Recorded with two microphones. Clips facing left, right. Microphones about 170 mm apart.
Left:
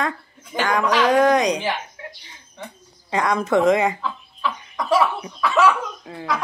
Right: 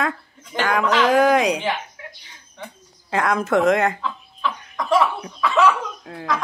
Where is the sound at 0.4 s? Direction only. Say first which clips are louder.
Even; 5° left (ahead or behind).